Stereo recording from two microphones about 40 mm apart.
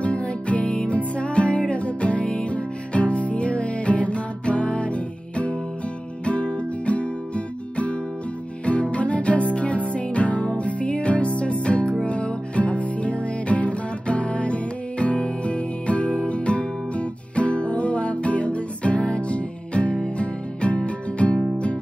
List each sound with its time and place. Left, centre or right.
0.0 s music: left